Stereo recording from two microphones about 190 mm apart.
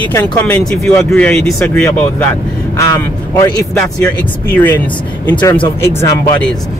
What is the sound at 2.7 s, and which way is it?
Speech, 15° left (ahead or behind).